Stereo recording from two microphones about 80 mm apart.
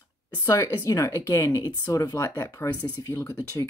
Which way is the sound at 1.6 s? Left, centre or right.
Left.